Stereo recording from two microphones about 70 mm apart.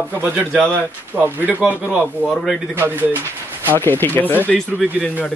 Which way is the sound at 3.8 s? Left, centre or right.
Left.